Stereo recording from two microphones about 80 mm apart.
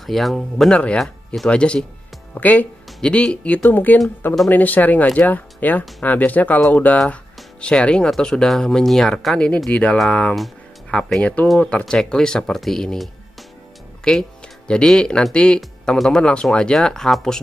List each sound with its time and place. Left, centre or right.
0.0 s speech: centre
0.7 s speech: centre